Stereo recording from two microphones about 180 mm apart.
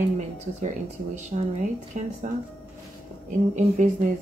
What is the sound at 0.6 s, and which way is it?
Speech, 40° right (ahead or behind).